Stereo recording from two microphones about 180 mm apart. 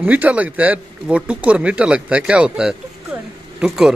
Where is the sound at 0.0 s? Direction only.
10° right (ahead or behind).